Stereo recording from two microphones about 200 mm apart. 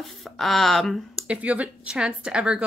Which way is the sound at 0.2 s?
Centre (ahead or behind).